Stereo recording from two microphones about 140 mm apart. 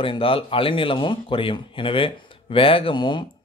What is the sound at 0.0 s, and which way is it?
Speech, 40° left (ahead or behind).